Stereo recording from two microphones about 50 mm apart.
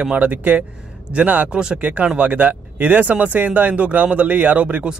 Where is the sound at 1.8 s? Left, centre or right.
Right.